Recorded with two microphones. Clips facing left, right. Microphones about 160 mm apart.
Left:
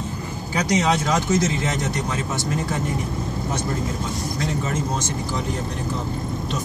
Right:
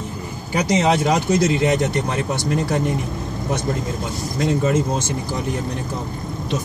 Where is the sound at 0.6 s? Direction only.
60° right (ahead or behind).